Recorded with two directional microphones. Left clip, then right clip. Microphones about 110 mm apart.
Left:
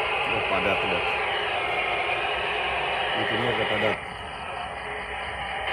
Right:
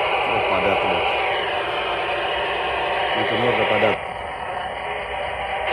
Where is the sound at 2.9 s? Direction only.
40° right (ahead or behind).